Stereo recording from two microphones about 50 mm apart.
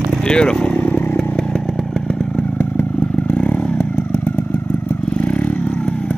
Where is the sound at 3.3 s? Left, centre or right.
Left.